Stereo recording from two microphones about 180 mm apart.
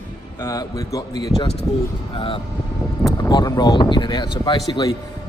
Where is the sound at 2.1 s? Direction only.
30° left (ahead or behind).